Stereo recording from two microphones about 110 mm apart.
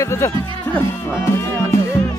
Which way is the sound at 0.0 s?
25° left (ahead or behind).